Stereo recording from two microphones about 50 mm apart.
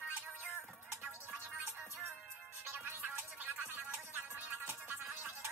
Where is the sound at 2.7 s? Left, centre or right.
Right.